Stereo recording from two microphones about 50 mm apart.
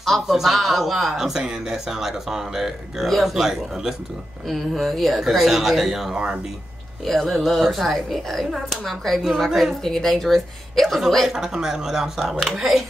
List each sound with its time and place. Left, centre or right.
0.0 s speech: centre
4.5 s speech: centre
6.1 s speech: right
7.1 s speech: centre
11.2 s speech: centre